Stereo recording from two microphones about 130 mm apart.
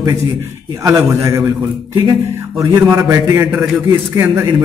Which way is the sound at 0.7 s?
25° right (ahead or behind).